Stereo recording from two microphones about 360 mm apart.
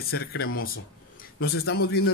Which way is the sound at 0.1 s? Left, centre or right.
Left.